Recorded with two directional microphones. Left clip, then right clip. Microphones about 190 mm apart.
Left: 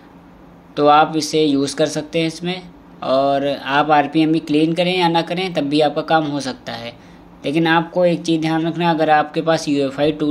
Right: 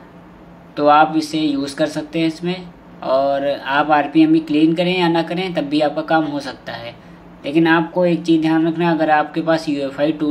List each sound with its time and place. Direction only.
0.7 s speech: 50° left (ahead or behind)